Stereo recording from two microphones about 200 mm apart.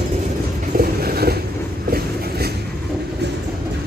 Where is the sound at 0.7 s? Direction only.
50° right (ahead or behind).